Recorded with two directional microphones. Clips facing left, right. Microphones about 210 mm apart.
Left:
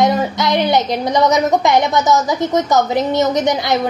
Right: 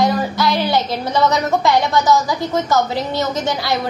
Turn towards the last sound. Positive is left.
turn(degrees=20)  # may be behind; listen again after turning